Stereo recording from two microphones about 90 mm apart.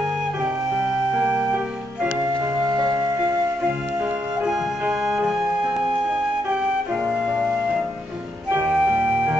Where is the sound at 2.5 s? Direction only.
40° right (ahead or behind).